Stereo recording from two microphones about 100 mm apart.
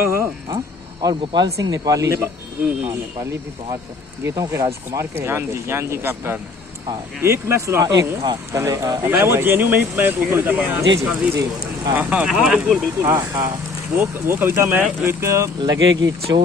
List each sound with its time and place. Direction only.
0.0 s a sound: 25° right (ahead or behind)
1.0 s speech: 40° right (ahead or behind)
4.4 s speech: 35° right (ahead or behind)
8.5 s speech: 30° right (ahead or behind)
10.8 s speech: 35° right (ahead or behind)
12.0 s speech: 15° right (ahead or behind)
13.0 s speech: 25° right (ahead or behind)